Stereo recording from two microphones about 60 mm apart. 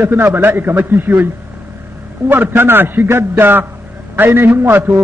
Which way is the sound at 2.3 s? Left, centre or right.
Right.